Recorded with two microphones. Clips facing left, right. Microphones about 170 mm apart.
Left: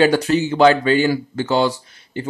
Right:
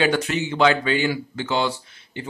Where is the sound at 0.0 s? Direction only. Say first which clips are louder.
Left 6 dB; 35° left (ahead or behind).